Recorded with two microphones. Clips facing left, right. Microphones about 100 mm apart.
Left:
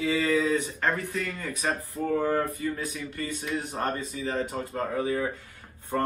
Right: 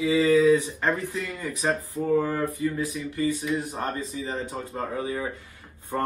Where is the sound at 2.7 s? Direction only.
15° right (ahead or behind).